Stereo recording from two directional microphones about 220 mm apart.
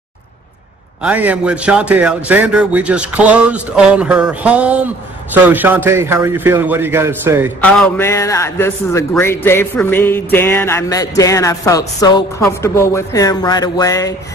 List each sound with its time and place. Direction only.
1.0 s a man's voice: 5° right (ahead or behind)
7.6 s a man's voice: 5° left (ahead or behind)